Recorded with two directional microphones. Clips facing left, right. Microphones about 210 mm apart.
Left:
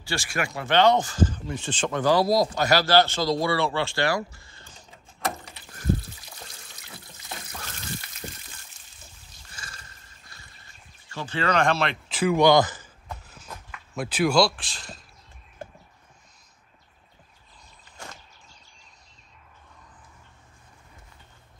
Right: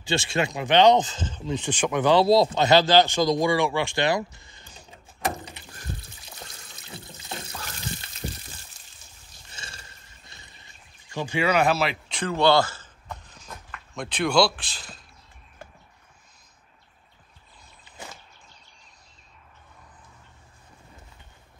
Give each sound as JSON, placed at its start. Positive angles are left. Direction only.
{"t": 0.0, "sound": "speech", "side_deg": -25}
{"t": 2.1, "sound": "speech", "side_deg": -25}
{"t": 6.8, "sound": "water", "side_deg": -25}
{"t": 8.2, "sound": "pour", "side_deg": -5}
{"t": 9.5, "sound": "wild animals", "side_deg": -25}
{"t": 11.1, "sound": "speech", "side_deg": -15}
{"t": 12.2, "sound": "a sound", "side_deg": 15}